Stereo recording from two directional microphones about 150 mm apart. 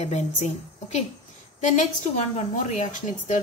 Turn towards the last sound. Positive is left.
turn(degrees=50)  # may be behind; listen again after turning